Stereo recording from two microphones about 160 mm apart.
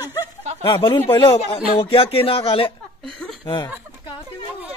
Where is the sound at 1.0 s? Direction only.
15° left (ahead or behind).